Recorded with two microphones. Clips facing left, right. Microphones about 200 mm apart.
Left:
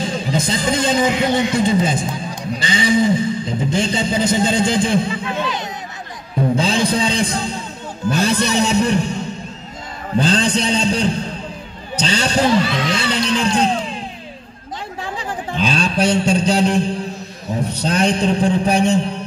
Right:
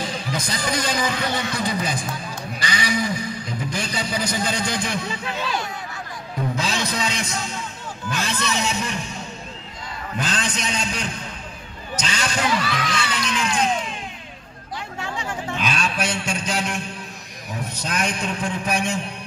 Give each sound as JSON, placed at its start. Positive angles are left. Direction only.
{"t": 0.0, "sound": "speech", "side_deg": 25}
{"t": 6.5, "sound": "speech", "side_deg": 30}
{"t": 15.0, "sound": "a sound", "side_deg": 35}
{"t": 17.5, "sound": "speech", "side_deg": 35}